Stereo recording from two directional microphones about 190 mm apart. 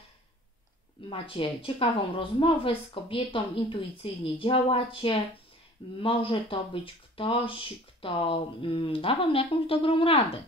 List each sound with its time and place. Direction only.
1.1 s speech: 30° left (ahead or behind)